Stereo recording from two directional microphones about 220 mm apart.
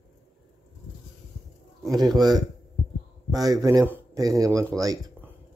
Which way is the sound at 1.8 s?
20° right (ahead or behind).